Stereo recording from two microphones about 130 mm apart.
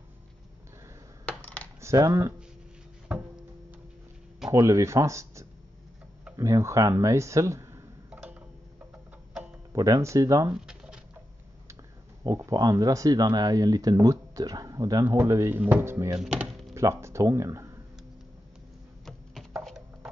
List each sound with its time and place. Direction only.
1.2 s coin: 10° left (ahead or behind)
1.8 s speech: 25° right (ahead or behind)
4.5 s speech: 25° right (ahead or behind)
8.1 s tick-tock: 10° right (ahead or behind)
9.7 s speech: 25° right (ahead or behind)
10.5 s pigeon: 5° right (ahead or behind)
12.2 s speech: 25° right (ahead or behind)
16.2 s speech: 10° right (ahead or behind)
16.7 s speech: 20° right (ahead or behind)
19.0 s a sound: centre (ahead or behind)